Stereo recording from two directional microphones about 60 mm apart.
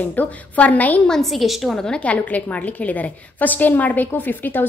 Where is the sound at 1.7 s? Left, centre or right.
Centre; by 4.6 s left.